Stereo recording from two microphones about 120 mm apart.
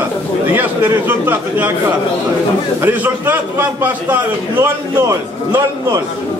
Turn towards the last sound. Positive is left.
turn(degrees=-20)  # may be behind; listen again after turning